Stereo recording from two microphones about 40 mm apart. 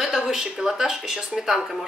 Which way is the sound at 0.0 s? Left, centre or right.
Centre.